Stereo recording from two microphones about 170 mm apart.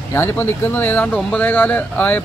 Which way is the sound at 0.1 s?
15° left (ahead or behind).